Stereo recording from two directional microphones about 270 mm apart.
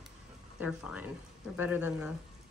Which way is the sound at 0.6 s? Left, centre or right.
Centre.